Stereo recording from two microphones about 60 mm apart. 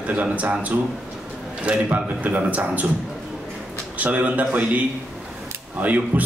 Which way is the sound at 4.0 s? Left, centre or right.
Right.